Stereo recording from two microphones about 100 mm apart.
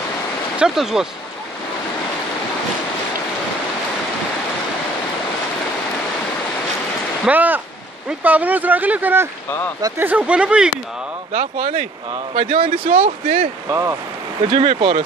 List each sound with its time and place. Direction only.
0.6 s speech: 5° right (ahead or behind)
7.2 s speech: 15° right (ahead or behind)
12.4 s speech: 65° right (ahead or behind)
13.7 s speech: 30° right (ahead or behind)
14.5 s speech: 60° right (ahead or behind)